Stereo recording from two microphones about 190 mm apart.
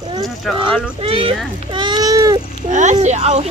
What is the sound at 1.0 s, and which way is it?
Speech, 30° right (ahead or behind).